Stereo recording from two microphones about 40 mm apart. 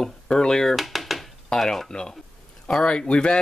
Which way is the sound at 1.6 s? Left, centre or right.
Centre.